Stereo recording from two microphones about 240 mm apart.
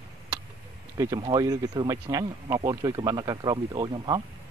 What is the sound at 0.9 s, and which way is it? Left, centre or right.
Speech, centre.